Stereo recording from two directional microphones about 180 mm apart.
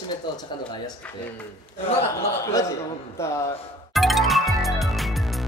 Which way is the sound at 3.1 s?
15° left (ahead or behind).